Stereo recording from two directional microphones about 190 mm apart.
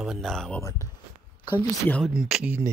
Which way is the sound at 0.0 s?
Centre (ahead or behind).